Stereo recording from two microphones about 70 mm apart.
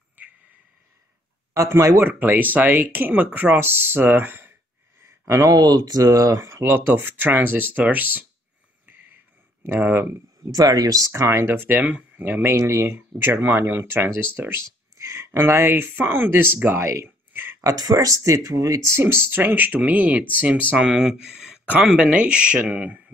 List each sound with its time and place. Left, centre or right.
1.5 s speech: right
2.0 s speech: right
5.2 s speech: right
6.1 s speech: right
9.8 s speech: right
10.5 s speech: right
11.1 s speech: right
12.5 s speech: right
16.6 s a sound: right
17.6 s speech: right
18.9 s speech: right